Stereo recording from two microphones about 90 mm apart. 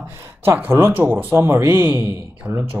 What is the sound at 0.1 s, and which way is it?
Speech, 25° right (ahead or behind).